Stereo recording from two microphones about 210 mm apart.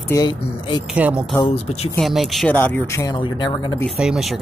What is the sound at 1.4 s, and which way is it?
Speech, 30° left (ahead or behind).